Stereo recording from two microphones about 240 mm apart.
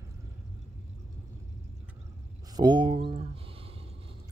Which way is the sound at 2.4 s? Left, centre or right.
Centre.